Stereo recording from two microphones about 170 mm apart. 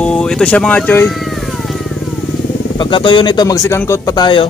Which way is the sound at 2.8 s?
30° left (ahead or behind).